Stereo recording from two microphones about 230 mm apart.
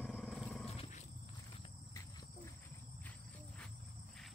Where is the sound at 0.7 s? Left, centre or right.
Left.